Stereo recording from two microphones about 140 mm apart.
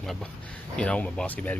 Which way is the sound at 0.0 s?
Centre (ahead or behind).